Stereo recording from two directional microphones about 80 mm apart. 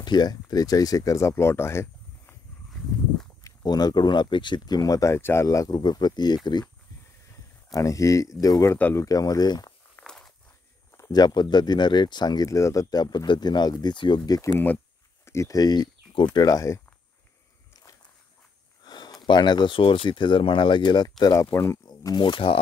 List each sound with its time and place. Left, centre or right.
0.0 s speech: left
3.6 s speech: left
5.7 s speech: left
7.7 s speech: left
10.0 s walk: centre
11.1 s speech: left
12.4 s speech: left
12.9 s speech: left
15.2 s speech: left
18.9 s speech: left
21.2 s speech: left
21.8 s speech: left